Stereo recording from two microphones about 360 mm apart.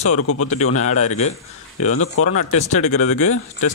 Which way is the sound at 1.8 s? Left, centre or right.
Left.